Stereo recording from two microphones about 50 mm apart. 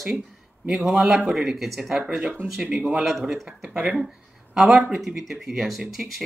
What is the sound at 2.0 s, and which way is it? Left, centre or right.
Speech, centre.